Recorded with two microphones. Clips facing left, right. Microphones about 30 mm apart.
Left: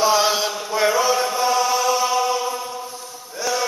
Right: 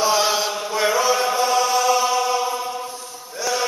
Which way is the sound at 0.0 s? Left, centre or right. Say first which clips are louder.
Left 1 dB; centre.